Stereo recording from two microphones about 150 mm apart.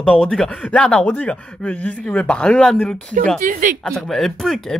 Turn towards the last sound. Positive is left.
turn(degrees=0)  # may be behind; listen again after turning